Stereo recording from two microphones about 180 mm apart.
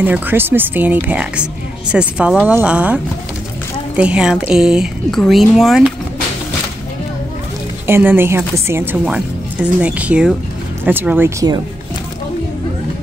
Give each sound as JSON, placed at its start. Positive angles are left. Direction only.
{"t": 0.0, "sound": "speech", "side_deg": -10}
{"t": 7.8, "sound": "speech", "side_deg": -10}